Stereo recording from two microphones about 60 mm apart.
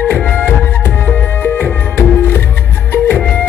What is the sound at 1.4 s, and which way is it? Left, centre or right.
Music, left.